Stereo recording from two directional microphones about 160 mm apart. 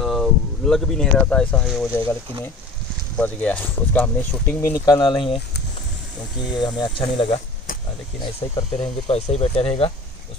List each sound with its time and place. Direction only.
0.0 s speech: centre (ahead or behind)
3.2 s speech: 10° left (ahead or behind); by 5.4 s 30° left (ahead or behind)
6.5 s speech: 25° left (ahead or behind)